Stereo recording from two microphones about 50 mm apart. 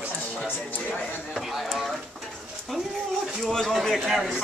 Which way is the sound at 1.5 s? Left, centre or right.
Centre.